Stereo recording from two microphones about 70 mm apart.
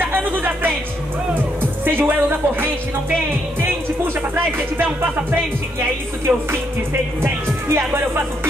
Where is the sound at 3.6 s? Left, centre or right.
Right.